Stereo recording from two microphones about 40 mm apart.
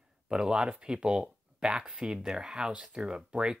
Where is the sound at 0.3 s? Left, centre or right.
Centre.